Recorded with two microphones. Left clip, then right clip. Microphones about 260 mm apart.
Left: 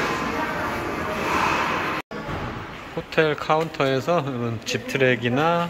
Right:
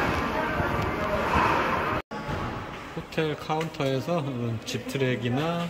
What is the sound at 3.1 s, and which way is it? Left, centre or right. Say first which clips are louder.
Speech: left 8 dB; centre.